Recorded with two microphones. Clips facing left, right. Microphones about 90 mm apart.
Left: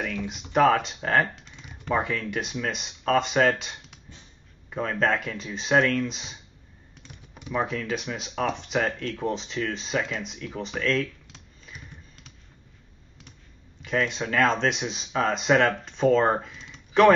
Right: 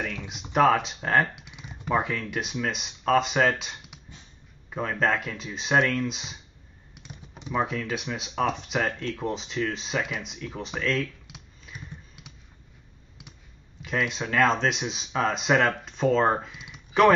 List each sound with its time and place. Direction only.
0.0 s a sound: 20° right (ahead or behind)
0.3 s speech: centre (ahead or behind)
1.3 s typing: 10° right (ahead or behind)
1.9 s speech: centre (ahead or behind)
7.0 s computer keyboard: 20° right (ahead or behind)
7.5 s speech: centre (ahead or behind)
13.8 s speech: centre (ahead or behind)